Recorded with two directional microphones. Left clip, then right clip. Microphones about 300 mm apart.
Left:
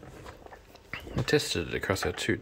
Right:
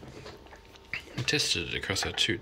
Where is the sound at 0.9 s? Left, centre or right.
Centre.